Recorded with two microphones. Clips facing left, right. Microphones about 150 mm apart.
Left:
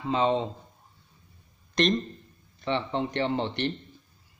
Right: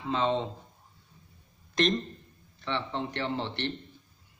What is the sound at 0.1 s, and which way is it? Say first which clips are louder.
Speech: left 3 dB; 15° left (ahead or behind).